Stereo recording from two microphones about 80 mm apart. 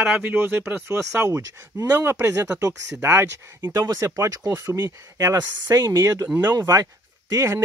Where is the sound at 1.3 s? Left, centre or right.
Right.